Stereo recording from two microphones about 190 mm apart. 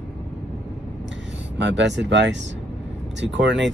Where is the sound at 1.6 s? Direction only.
70° right (ahead or behind).